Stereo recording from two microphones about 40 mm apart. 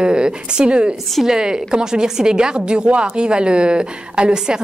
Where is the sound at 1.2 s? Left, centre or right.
Centre.